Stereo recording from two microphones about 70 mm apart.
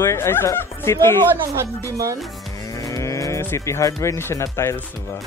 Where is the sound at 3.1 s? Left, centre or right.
Left.